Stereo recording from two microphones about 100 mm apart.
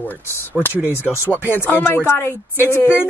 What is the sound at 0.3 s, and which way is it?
Speech, 20° left (ahead or behind).